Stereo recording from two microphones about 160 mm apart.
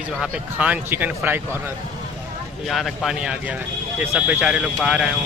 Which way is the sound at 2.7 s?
Centre (ahead or behind).